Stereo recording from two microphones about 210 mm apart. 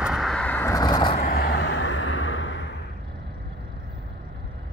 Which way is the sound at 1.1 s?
45° left (ahead or behind).